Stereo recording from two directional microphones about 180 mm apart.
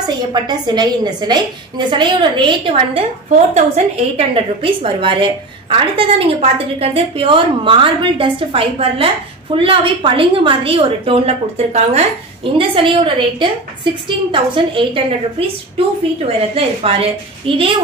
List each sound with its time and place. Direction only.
0.0 s a woman's voice: 25° right (ahead or behind)